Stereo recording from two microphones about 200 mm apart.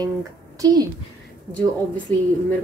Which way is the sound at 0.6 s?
20° right (ahead or behind).